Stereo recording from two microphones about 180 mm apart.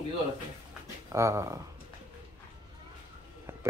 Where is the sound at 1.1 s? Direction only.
15° right (ahead or behind).